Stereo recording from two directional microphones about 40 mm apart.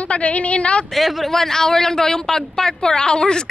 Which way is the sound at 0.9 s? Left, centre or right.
Centre.